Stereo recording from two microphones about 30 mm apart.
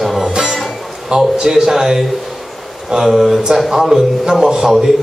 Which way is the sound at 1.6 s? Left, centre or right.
Centre.